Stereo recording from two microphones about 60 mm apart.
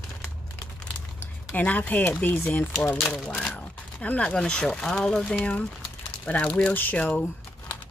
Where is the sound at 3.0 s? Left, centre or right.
Centre.